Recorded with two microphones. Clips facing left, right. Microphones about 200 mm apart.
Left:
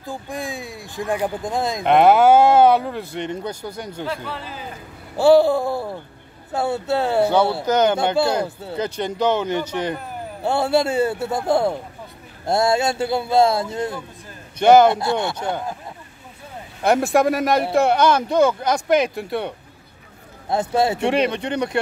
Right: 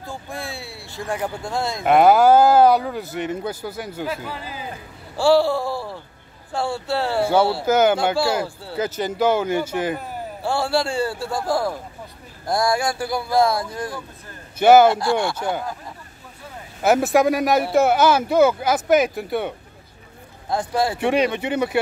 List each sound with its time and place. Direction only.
0.0 s speech: 15° left (ahead or behind)
1.8 s speech: 5° right (ahead or behind)
5.1 s a man's voice: 20° left (ahead or behind)
7.6 s speech: 5° right (ahead or behind)
8.5 s a man's voice: 20° left (ahead or behind)
8.7 s speech: 5° right (ahead or behind)
10.4 s a man's voice: 20° left (ahead or behind)
14.6 s speech: 5° right (ahead or behind)
14.9 s a man's voice: 20° left (ahead or behind)
16.8 s speech: centre (ahead or behind)
20.4 s a man's voice: 25° left (ahead or behind)
21.0 s speech: centre (ahead or behind)